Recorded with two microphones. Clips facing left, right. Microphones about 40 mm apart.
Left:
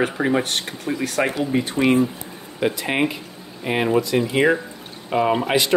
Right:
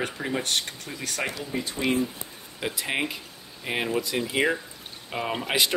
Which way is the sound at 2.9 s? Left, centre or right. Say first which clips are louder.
Left 7 dB; centre.